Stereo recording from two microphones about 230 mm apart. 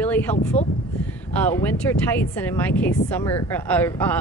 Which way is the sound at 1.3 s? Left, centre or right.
Centre.